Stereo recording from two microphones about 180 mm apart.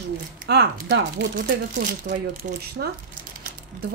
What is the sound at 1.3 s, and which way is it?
Speech, 50° right (ahead or behind).